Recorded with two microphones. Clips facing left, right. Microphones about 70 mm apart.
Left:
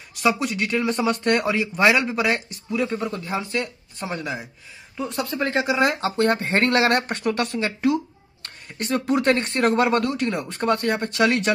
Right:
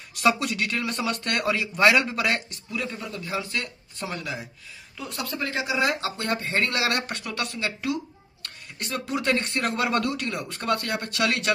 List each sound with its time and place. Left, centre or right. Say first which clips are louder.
0.2 s speech: left 1 dB; left